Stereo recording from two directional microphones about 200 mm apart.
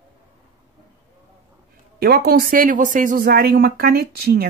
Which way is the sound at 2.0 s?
50° right (ahead or behind).